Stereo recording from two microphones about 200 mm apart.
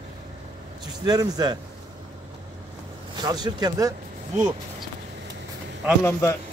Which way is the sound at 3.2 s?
20° right (ahead or behind).